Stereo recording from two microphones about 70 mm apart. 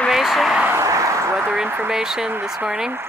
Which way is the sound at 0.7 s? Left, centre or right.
Right.